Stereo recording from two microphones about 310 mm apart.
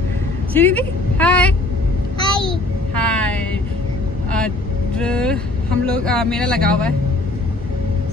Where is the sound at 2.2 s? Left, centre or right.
Centre.